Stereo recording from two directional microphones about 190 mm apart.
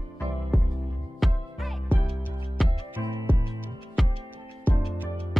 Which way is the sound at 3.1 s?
15° right (ahead or behind).